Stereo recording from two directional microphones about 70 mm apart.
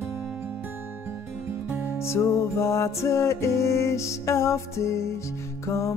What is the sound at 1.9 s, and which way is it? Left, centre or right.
Music, left.